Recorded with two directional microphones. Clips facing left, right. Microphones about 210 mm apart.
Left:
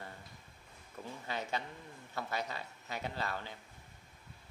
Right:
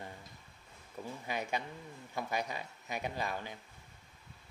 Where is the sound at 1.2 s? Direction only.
15° right (ahead or behind).